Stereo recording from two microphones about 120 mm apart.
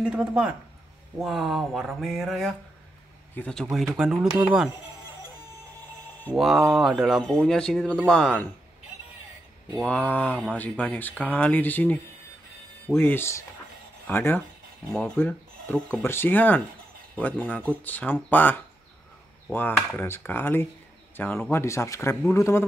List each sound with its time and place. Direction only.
0.0 s speech: 10° right (ahead or behind); by 3.6 s 10° left (ahead or behind)
3.7 s speech: 5° right (ahead or behind)
6.3 s speech: centre (ahead or behind)
9.8 s speech: 15° left (ahead or behind)
20.0 s speech: 15° left (ahead or behind)